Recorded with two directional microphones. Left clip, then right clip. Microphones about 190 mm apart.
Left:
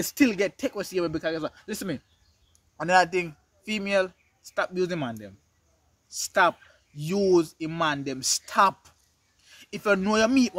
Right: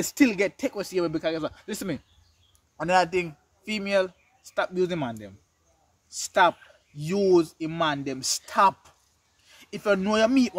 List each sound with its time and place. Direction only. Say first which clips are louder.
0.0 s a man's voice: right 1 dB; 15° left (ahead or behind)